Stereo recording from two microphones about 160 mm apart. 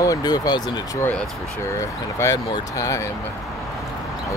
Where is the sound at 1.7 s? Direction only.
20° left (ahead or behind).